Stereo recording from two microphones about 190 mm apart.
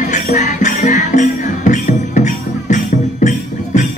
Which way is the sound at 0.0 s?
40° left (ahead or behind).